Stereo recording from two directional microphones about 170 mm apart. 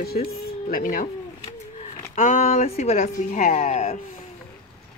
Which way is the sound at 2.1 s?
45° left (ahead or behind).